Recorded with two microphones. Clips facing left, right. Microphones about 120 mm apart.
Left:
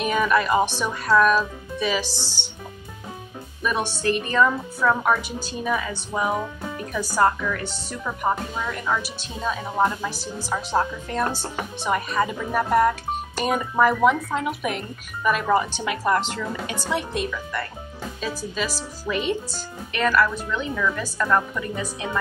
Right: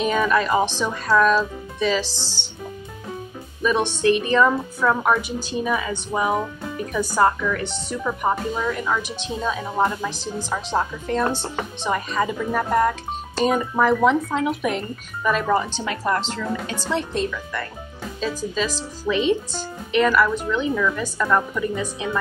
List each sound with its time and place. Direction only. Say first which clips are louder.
0.0 s speech: right 1 dB; 10° left (ahead or behind)
3.6 s speech: right 4 dB; 10° left (ahead or behind)
4.0 s speech: right 3 dB; 15° right (ahead or behind)
8.1 s speech: right 2 dB; 5° right (ahead or behind)
19.9 s speech: right 3 dB; 15° right (ahead or behind)
20.7 s speech: right 3 dB; centre (ahead or behind)